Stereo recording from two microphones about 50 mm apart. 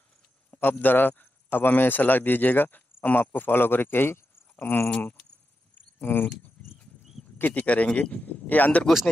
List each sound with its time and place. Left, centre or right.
0.5 s a man's voice: left
5.8 s a sound: left
7.3 s speech: left
8.1 s speech: left